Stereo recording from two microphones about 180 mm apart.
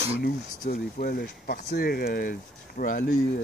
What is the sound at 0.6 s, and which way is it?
Speech, 50° left (ahead or behind).